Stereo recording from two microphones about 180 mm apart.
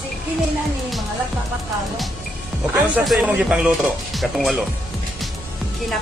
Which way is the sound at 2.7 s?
5° right (ahead or behind).